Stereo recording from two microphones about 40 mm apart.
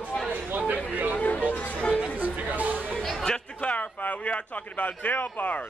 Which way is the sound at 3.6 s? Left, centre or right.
Left.